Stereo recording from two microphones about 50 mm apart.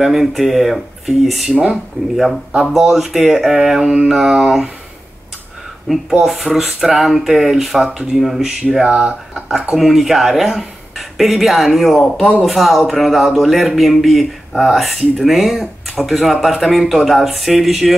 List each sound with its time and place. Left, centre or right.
0.0 s speech: centre
2.7 s speech: centre
5.9 s speech: centre
9.3 s speech: centre